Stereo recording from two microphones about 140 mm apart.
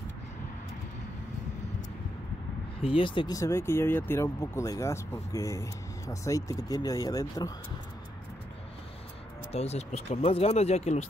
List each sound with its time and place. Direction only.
2.8 s speech: 40° left (ahead or behind)
3.3 s speech: 20° left (ahead or behind)
9.5 s speech: 50° left (ahead or behind)